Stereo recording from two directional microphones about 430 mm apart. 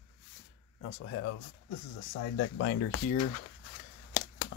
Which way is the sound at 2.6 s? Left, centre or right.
Left.